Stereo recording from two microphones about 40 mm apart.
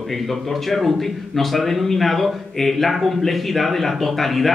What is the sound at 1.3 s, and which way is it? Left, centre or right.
A man's voice, centre.